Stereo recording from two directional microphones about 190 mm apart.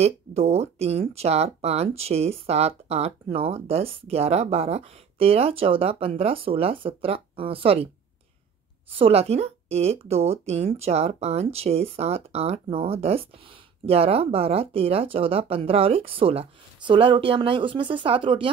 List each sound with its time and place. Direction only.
0.0 s speech: 35° right (ahead or behind)
8.9 s speech: 30° right (ahead or behind)